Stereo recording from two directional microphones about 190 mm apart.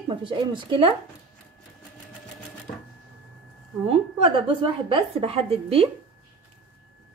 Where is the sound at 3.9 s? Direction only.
30° right (ahead or behind).